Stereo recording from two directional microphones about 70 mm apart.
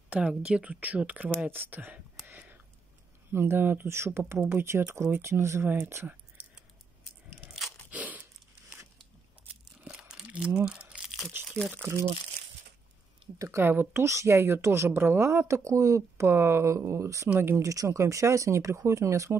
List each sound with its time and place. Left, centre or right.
0.3 s speech: centre
2.2 s a sound: right
3.3 s speech: right
7.9 s crunch: right
9.8 s crumpling: centre
11.1 s crumpling: centre
11.7 s speech: right
13.6 s speech: right
14.0 s a woman's voice: right
17.3 s speech: right
17.6 s a woman's voice: right